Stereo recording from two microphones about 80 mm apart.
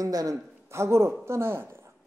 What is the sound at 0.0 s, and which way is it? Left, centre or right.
Speech, right.